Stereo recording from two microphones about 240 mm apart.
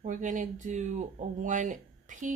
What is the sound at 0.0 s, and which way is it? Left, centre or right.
Speech, right.